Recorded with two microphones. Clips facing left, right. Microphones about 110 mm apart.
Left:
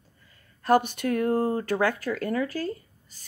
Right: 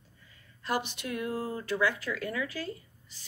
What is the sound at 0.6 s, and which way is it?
Speech, 50° left (ahead or behind).